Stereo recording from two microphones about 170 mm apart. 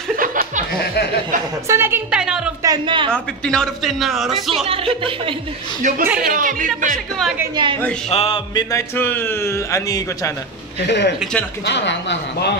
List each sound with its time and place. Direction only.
0.1 s music: 55° right (ahead or behind)
0.7 s a sound: 70° left (ahead or behind)
1.7 s a woman's voice: 15° right (ahead or behind)
2.6 s a sound: 25° right (ahead or behind)
3.1 s a man's voice: 5° left (ahead or behind)
4.6 s speech: 35° right (ahead or behind)
5.8 s speech: 50° right (ahead or behind)
7.5 s a man's voice: 30° right (ahead or behind)
8.1 s a man's voice: 35° left (ahead or behind)
8.5 s a man's voice: 15° left (ahead or behind)
10.8 s a man's voice: 80° left
11.6 s speech: 90° left